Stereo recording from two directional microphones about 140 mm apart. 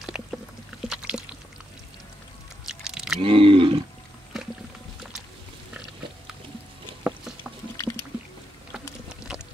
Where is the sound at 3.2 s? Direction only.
40° right (ahead or behind).